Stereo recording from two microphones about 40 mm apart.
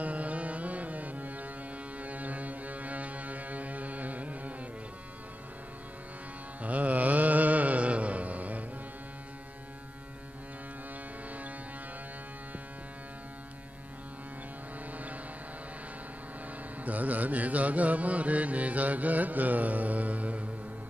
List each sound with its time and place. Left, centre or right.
0.0 s music: right
6.6 s mantra: right
14.9 s music: right
16.8 s mantra: right